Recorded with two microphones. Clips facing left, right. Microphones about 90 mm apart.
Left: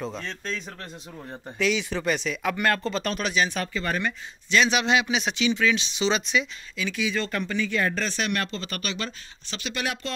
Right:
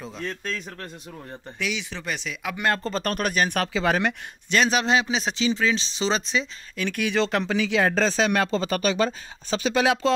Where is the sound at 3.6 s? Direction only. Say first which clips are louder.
Right 5 dB; 90° right.